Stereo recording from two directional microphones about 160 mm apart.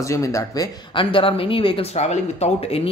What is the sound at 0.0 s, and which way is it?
Speech, 20° left (ahead or behind).